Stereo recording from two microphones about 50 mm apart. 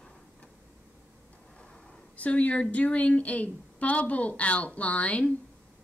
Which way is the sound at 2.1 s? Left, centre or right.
Left.